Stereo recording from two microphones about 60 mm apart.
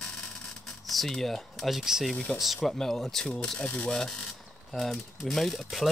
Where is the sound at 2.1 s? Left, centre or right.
Centre.